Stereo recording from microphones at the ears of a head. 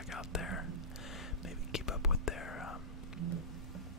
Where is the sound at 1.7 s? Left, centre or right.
Left.